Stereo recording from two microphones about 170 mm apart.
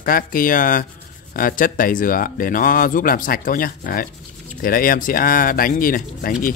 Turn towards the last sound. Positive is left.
turn(degrees=55)  # may be behind; listen again after turning